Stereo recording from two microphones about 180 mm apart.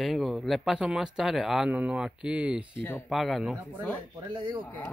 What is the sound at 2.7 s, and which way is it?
Speech, 10° left (ahead or behind).